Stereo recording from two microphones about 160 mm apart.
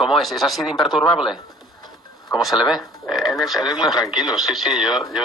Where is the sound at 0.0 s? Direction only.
Centre (ahead or behind).